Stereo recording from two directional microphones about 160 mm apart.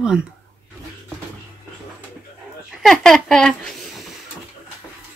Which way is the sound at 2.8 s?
5° left (ahead or behind).